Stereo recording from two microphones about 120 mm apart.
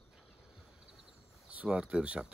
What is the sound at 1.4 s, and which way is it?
Speech, 10° right (ahead or behind).